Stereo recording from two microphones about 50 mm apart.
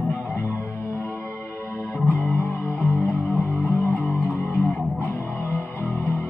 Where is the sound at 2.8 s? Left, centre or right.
Right.